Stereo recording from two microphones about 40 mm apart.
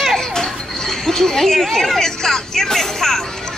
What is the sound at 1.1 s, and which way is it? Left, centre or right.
Speech, centre.